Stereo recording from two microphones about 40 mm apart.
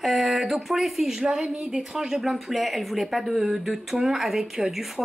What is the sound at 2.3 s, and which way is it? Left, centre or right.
Speech, centre.